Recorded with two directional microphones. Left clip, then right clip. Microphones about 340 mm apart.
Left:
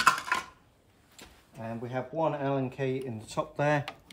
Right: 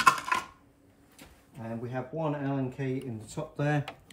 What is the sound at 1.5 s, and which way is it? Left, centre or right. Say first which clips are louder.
Speech: left 1 dB; centre.